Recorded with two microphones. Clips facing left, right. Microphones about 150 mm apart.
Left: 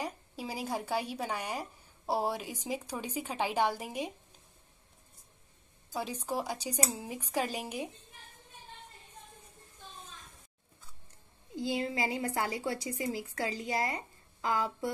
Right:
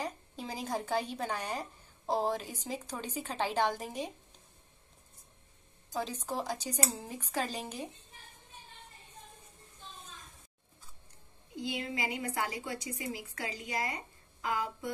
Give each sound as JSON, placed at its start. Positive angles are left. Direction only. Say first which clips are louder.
{"t": 0.0, "sound": "a woman's voice", "louder": "left 1 dB", "side_deg": 10}
{"t": 5.9, "sound": "a woman's voice", "louder": "left 1 dB", "side_deg": 10}
{"t": 11.5, "sound": "a woman's voice", "louder": "left 4 dB", "side_deg": 35}